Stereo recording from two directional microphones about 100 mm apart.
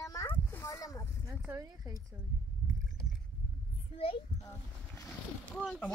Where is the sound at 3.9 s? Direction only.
70° left (ahead or behind).